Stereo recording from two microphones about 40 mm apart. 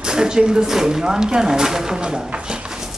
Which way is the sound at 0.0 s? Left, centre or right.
Centre.